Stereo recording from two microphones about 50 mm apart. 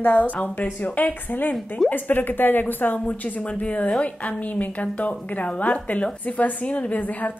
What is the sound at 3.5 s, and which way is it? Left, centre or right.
Speech, left.